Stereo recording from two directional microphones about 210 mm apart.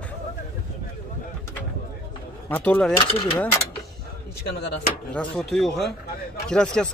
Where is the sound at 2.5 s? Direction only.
10° left (ahead or behind).